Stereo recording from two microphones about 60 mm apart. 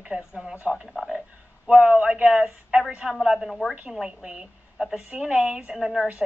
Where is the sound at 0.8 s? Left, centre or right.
Centre.